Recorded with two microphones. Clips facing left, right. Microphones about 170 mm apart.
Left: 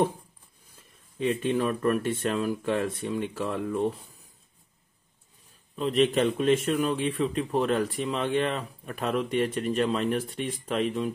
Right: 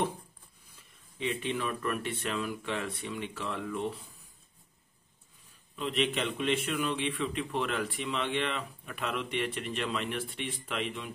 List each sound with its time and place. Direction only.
1.1 s speech: 45° left (ahead or behind)
5.8 s a man's voice: 40° left (ahead or behind)